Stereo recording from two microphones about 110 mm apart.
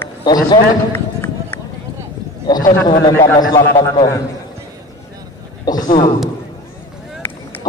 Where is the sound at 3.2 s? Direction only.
40° left (ahead or behind).